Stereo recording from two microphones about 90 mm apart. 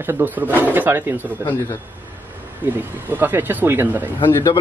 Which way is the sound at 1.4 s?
30° left (ahead or behind).